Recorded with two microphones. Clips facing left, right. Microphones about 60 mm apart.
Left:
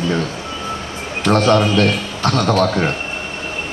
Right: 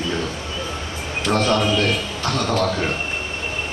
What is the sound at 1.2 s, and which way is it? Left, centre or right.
A man's voice, left.